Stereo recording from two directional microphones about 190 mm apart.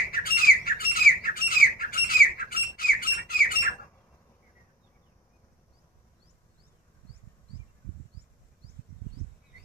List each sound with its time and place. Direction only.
0.1 s squawk: 50° left (ahead or behind)